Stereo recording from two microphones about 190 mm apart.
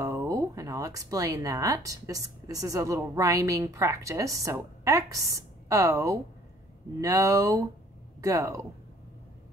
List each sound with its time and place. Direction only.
0.0 s speech: 15° right (ahead or behind)